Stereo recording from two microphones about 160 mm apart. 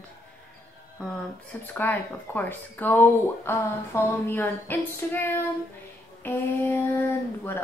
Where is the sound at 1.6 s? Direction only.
10° left (ahead or behind).